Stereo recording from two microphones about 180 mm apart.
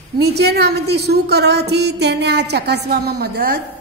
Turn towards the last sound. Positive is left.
turn(degrees=-60)  # may be behind; listen again after turning